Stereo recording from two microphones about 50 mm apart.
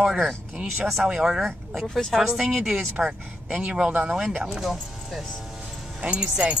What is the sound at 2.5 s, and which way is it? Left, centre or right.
Speech, centre.